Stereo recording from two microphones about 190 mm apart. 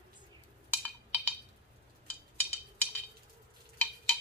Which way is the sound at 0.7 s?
10° left (ahead or behind).